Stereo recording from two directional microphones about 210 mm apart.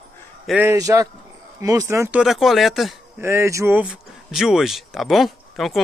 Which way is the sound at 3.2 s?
15° right (ahead or behind).